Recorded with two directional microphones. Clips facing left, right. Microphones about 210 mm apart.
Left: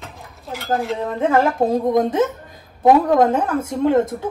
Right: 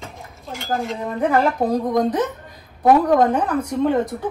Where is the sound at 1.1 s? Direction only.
25° left (ahead or behind).